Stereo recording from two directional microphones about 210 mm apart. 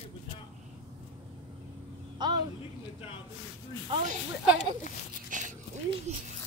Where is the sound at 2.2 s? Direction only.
20° right (ahead or behind).